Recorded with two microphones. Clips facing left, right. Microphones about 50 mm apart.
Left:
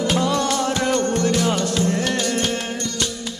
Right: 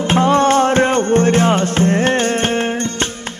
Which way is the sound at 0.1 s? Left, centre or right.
Right.